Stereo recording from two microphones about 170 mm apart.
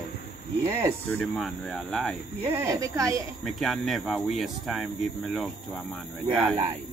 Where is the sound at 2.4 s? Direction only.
15° right (ahead or behind).